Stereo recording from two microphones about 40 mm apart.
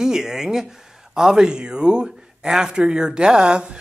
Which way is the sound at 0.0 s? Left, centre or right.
Centre.